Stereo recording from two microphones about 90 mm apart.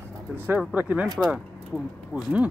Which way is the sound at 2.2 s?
10° right (ahead or behind).